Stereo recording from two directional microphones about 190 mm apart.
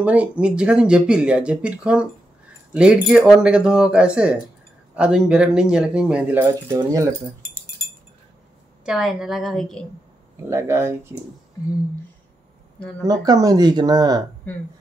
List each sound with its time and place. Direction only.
0.0 s speech: 5° right (ahead or behind)
8.8 s speech: 5° right (ahead or behind)
10.5 s speech: 15° right (ahead or behind)
13.0 s speech: 20° right (ahead or behind)